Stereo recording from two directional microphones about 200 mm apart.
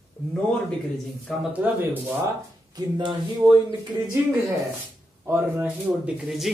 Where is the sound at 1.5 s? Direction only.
10° right (ahead or behind).